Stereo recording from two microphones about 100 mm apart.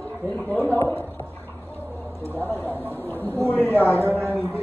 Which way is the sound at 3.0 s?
20° left (ahead or behind).